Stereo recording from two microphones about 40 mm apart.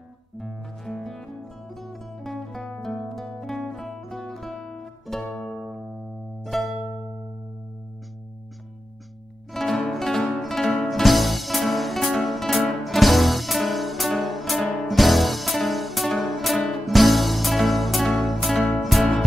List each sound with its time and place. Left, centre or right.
0.4 s music: centre
5.2 s music: left
5.6 s music: centre
9.5 s music: centre
16.5 s music: centre
16.8 s music: centre